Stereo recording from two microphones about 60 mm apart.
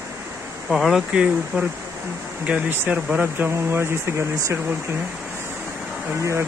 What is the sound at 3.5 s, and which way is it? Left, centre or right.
Speech, right.